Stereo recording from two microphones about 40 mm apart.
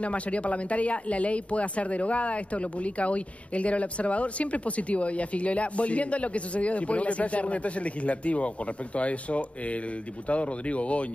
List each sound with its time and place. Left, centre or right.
0.0 s speech: left